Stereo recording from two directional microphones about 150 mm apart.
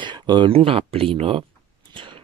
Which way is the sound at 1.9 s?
35° right (ahead or behind).